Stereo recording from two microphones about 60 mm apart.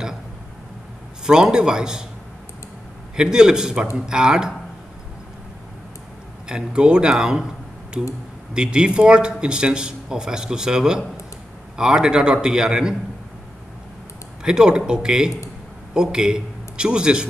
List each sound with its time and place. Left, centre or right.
1.2 s speech: centre
3.2 s speech: centre
6.5 s speech: centre
8.5 s speech: centre
14.4 s a man's voice: centre